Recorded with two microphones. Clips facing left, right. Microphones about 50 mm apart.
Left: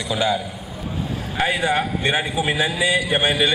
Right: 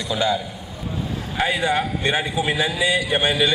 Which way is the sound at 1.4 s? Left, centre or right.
Left.